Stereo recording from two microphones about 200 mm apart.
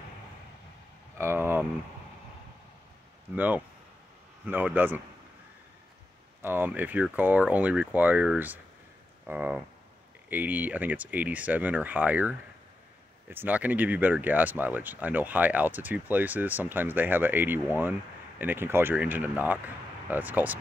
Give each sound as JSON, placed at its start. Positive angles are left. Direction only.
{"t": 1.1, "sound": "speech", "side_deg": -10}
{"t": 3.3, "sound": "speech", "side_deg": -10}
{"t": 6.4, "sound": "speech", "side_deg": -10}